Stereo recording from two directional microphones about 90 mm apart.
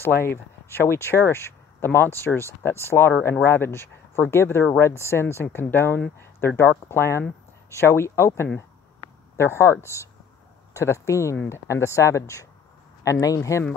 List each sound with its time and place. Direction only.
0.0 s speech: 25° left (ahead or behind)